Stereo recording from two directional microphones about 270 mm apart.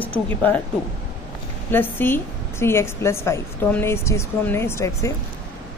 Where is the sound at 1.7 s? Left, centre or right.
Centre.